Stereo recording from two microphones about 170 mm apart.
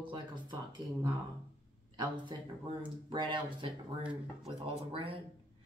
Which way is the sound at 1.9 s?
25° right (ahead or behind).